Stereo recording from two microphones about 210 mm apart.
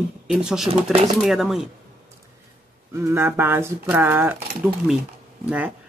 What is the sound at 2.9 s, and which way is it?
Speech, 10° right (ahead or behind).